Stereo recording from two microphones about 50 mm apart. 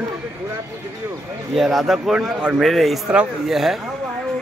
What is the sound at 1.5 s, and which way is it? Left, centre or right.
Speech, centre.